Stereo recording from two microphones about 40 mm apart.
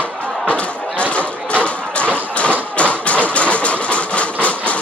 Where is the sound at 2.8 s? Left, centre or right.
Left.